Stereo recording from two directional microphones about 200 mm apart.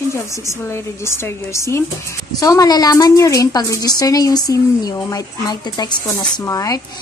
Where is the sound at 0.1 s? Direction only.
15° left (ahead or behind).